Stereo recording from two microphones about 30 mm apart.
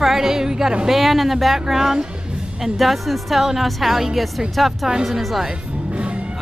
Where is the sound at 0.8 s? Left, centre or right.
Centre.